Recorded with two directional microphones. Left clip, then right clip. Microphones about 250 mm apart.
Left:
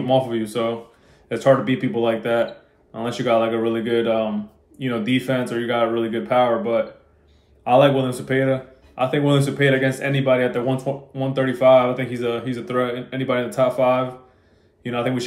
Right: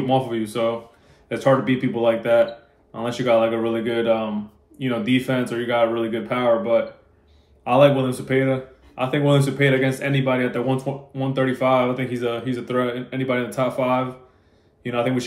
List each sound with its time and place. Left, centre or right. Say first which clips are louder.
0.0 s speech: left 2 dB; centre